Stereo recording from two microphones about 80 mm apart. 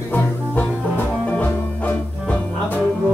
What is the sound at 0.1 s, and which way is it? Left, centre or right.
Music, left.